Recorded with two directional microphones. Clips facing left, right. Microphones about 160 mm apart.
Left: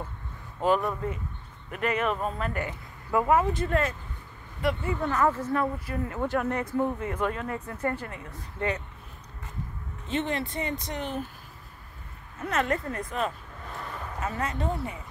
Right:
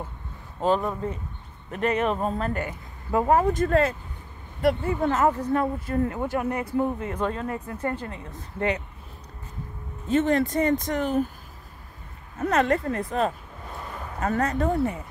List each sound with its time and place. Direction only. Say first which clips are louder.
0.6 s speech: right 1 dB; 25° right (ahead or behind)
5.1 s speech: right 1 dB; 20° right (ahead or behind)
6.2 s speech: right 1 dB; 5° right (ahead or behind)
7.0 s speech: right 2 dB; 25° right (ahead or behind)
10.0 s speech: right 8 dB; 40° right (ahead or behind)
12.4 s speech: right 6 dB; 35° right (ahead or behind)
14.2 s speech: right 7 dB; 45° right (ahead or behind)